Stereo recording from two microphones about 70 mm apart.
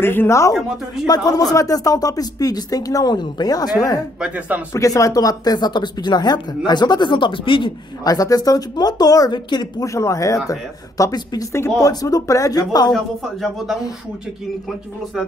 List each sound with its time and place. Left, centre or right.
0.0 s speech: left
0.3 s speech: left
1.0 s speech: left
4.2 s a man's voice: right
4.7 s speech: left
8.0 s speech: left
9.8 s speech: left
12.9 s a man's voice: centre